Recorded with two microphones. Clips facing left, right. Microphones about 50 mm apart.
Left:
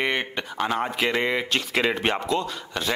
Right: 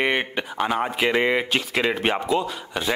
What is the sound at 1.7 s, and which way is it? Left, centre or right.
Speech, centre.